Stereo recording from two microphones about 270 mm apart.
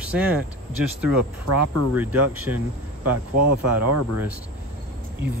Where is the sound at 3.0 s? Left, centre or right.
Right.